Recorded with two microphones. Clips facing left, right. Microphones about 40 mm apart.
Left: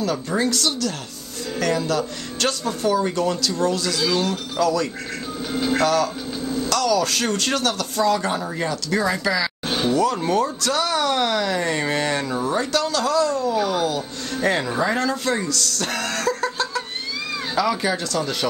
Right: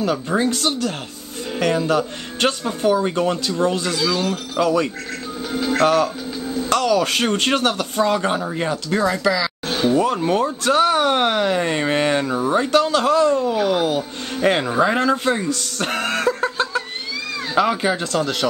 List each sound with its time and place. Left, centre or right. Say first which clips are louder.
0.0 s speech: right 2 dB; right
4.0 s speech: even; centre
4.6 s speech: right 3 dB; right
5.5 s speech: right 2 dB; centre
6.4 s a sound: even; centre
6.7 s speech: right 3 dB; right
9.3 s a sound: right 1 dB; centre
9.9 s speech: even; right